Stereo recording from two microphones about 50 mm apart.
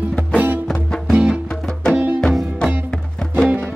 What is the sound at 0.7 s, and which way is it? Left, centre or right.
Music, centre.